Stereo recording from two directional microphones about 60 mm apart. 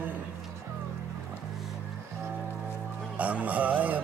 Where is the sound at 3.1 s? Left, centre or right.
Right.